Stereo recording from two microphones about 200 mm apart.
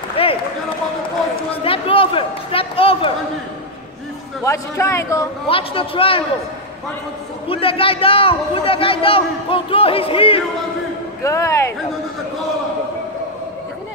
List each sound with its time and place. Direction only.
0.2 s run: 30° left (ahead or behind)
1.5 s a sound: 25° left (ahead or behind)
4.5 s a man's voice: 15° left (ahead or behind)
5.5 s a man's voice: 25° left (ahead or behind)
7.4 s a man's voice: 25° left (ahead or behind)
11.2 s a man's voice: 15° left (ahead or behind)